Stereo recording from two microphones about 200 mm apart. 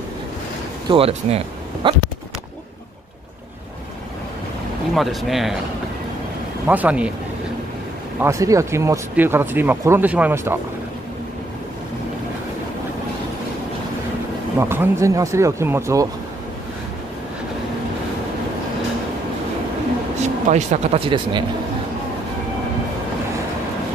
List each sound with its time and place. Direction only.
0.8 s speech: 30° right (ahead or behind)
4.9 s speech: centre (ahead or behind)
6.7 s speech: 5° right (ahead or behind)
8.2 s speech: 15° right (ahead or behind)
14.6 s speech: 10° right (ahead or behind)
20.2 s speech: 35° right (ahead or behind)